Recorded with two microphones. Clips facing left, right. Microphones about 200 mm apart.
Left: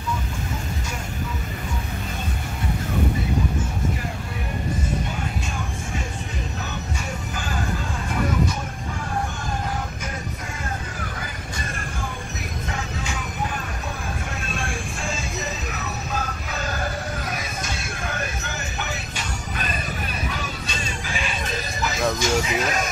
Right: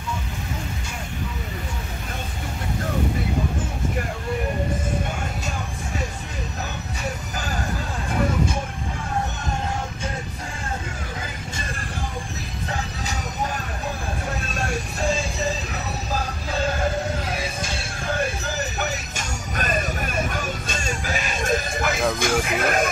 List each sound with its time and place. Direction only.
14.5 s music: 40° right (ahead or behind)
17.3 s a sound: 30° right (ahead or behind); by 22.0 s 55° right (ahead or behind)
22.2 s music: 55° right (ahead or behind)